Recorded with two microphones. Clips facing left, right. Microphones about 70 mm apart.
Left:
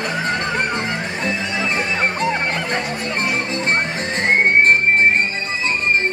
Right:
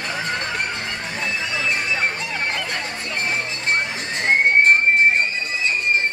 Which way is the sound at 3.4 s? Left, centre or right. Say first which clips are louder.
Left 3 dB; left.